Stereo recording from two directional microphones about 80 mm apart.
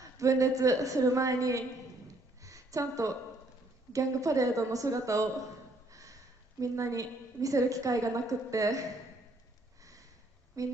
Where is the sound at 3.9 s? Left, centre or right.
Right.